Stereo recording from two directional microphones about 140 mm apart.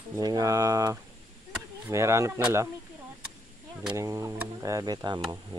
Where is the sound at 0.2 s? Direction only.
25° right (ahead or behind).